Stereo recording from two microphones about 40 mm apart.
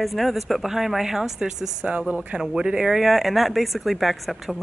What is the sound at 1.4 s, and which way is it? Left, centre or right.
Speech, right.